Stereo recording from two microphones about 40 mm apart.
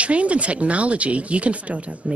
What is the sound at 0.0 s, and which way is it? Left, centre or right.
Speech, right.